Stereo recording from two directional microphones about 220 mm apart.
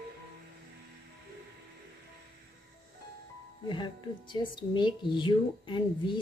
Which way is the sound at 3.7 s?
20° left (ahead or behind).